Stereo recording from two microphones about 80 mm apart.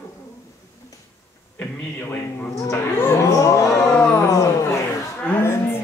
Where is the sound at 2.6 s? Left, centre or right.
Left.